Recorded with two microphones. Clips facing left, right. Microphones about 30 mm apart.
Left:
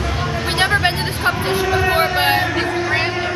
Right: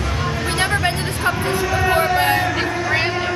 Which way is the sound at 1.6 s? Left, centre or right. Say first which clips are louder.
Left 1 dB; centre.